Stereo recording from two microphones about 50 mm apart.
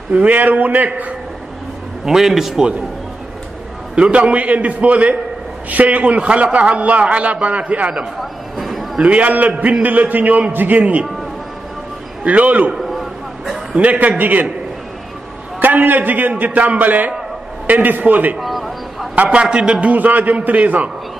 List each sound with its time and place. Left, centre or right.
0.1 s a man's voice: right
2.0 s a man's voice: centre
3.9 s a man's voice: right
8.2 s a sound: centre
8.9 s a man's voice: right
12.3 s a man's voice: right
12.7 s a sound: centre
13.7 s a man's voice: right
15.6 s a man's voice: right
18.4 s a sound: centre
19.3 s a man's voice: right